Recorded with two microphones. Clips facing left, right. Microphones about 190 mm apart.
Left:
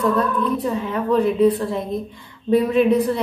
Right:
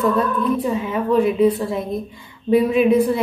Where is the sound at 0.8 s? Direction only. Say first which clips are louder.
Right 1 dB; 10° right (ahead or behind).